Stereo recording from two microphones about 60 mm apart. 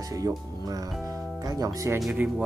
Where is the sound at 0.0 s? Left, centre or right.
Right.